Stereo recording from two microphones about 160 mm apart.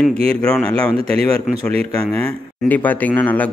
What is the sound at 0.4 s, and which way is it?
Speech, 5° left (ahead or behind).